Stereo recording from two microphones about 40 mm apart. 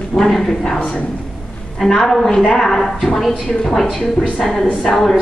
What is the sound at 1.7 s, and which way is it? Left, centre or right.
Speech, centre.